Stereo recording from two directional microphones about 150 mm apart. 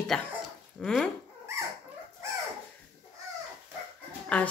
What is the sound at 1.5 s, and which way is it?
Dog, 20° right (ahead or behind).